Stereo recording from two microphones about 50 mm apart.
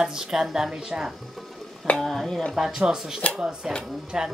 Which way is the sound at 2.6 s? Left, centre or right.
Centre.